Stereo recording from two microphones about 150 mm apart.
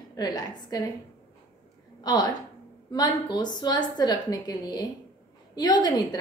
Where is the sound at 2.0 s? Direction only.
25° left (ahead or behind).